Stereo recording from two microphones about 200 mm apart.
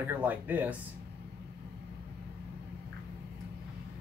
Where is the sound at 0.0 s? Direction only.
10° right (ahead or behind).